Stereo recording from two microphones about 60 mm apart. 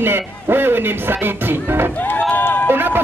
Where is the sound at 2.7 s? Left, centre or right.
Right.